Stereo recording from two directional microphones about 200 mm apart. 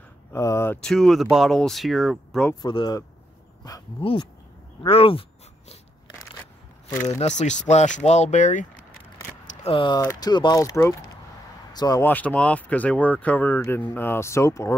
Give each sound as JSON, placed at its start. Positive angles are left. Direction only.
{"t": 0.3, "sound": "speech", "side_deg": 15}
{"t": 2.6, "sound": "speech", "side_deg": 20}
{"t": 7.2, "sound": "speech", "side_deg": 35}
{"t": 9.6, "sound": "speech", "side_deg": 25}